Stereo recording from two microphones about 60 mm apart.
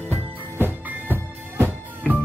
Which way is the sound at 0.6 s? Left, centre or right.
Right.